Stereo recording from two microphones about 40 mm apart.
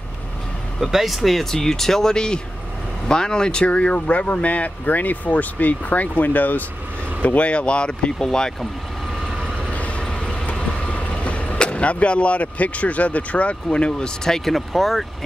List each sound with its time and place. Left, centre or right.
0.7 s speech: centre
2.1 s speech: left
7.3 s speech: left
9.7 s vehicle: left
11.5 s speech: left
14.5 s speech: centre